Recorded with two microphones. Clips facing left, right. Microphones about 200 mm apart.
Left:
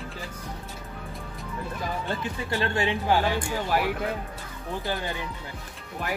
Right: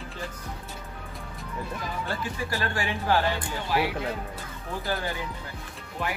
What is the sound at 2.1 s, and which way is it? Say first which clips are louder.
Speech: right 1 dB; 25° left (ahead or behind).